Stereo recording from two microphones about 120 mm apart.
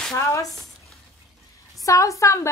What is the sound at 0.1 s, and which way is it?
Speech, 25° left (ahead or behind).